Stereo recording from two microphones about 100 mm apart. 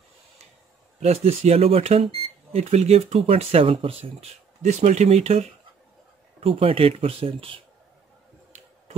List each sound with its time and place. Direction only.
1.0 s speech: 90° right; by 4.3 s 75° right (ahead or behind)
4.7 s speech: 90° right
6.4 s speech: 65° right (ahead or behind)